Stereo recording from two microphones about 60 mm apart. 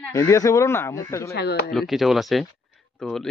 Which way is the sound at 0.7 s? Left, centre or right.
Left.